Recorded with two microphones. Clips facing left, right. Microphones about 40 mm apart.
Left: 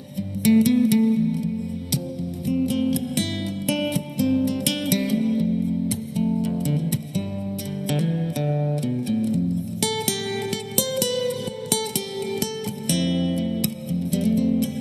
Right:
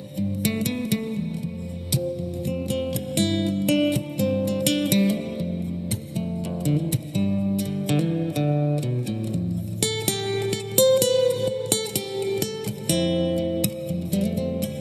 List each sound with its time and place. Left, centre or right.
0.5 s music: centre
2.6 s music: centre
6.6 s music: centre
9.8 s music: centre